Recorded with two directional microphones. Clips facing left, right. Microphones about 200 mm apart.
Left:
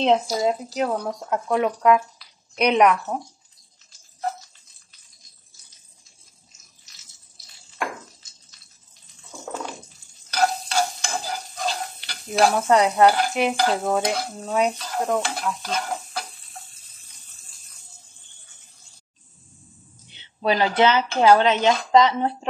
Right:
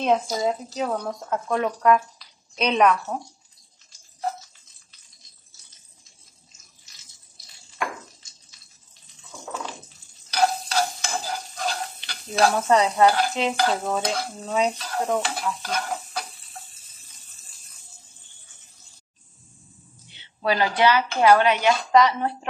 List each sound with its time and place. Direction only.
0.0 s speech: 25° left (ahead or behind)
0.4 s speech: 15° left (ahead or behind)
10.4 s stir: centre (ahead or behind)
12.6 s speech: 10° left (ahead or behind)
15.0 s stir: 5° right (ahead or behind)
20.4 s speech: 20° left (ahead or behind)